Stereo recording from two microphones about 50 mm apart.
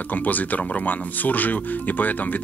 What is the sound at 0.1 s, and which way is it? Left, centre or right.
Speech, left.